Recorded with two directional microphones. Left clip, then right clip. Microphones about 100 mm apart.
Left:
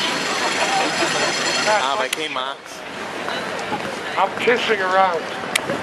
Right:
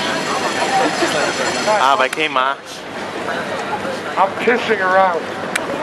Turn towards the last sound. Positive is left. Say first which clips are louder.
# right 3 dB
turn(degrees=15)  # may be behind; listen again after turning